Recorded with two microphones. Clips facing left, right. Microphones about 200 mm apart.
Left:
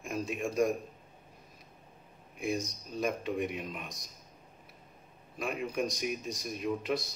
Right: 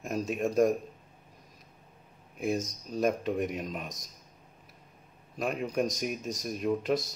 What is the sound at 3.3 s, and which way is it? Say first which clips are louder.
Speech: right 2 dB; 45° right (ahead or behind).